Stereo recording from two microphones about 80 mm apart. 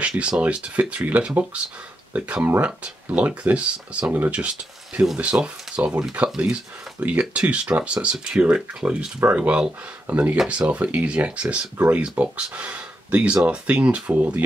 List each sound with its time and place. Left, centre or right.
0.0 s speech: centre